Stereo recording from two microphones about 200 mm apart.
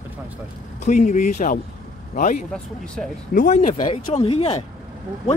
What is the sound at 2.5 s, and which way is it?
Speech, 5° left (ahead or behind).